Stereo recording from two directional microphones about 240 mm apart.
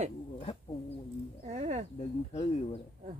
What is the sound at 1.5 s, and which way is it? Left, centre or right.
Speech, right.